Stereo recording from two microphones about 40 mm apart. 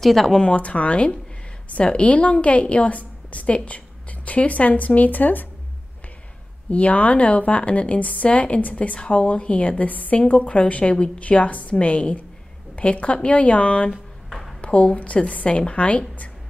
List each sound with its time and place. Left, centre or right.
0.0 s speech: centre
0.4 s a woman's voice: left
6.7 s a woman's voice: left